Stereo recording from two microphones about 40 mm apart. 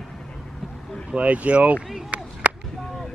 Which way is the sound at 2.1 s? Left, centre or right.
Right.